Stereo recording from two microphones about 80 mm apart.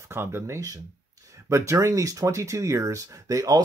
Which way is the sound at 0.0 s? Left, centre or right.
Right.